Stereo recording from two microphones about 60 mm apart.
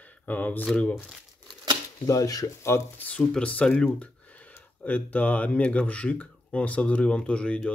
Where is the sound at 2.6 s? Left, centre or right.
Left.